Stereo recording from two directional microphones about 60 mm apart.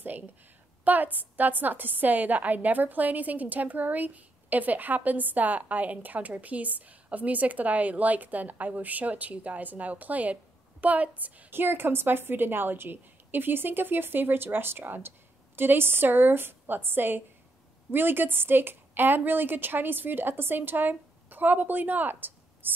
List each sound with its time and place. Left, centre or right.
0.8 s a woman's voice: right